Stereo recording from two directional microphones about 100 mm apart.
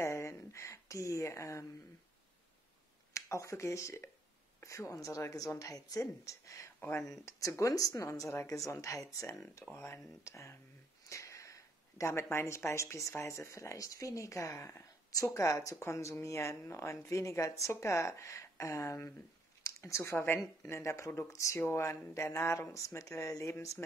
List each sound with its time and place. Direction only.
0.0 s a sound: 30° left (ahead or behind)
3.1 s speech: 30° left (ahead or behind)
6.8 s speech: 20° left (ahead or behind)
7.1 s speech: 35° left (ahead or behind)